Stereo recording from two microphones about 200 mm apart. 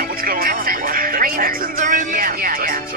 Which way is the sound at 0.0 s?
45° right (ahead or behind).